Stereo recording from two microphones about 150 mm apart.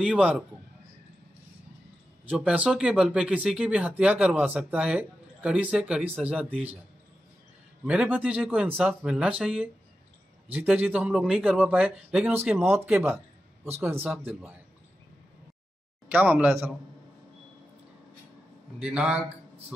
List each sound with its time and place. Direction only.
0.0 s speech: 5° right (ahead or behind)
2.2 s speech: 10° right (ahead or behind)
7.8 s speech: 5° right (ahead or behind)
12.7 s speech: 5° right (ahead or behind)
13.7 s speech: 15° right (ahead or behind)
16.1 s speech: 10° right (ahead or behind)
18.8 s speech: 5° right (ahead or behind)